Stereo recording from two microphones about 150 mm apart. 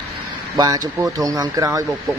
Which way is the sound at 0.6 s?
25° right (ahead or behind).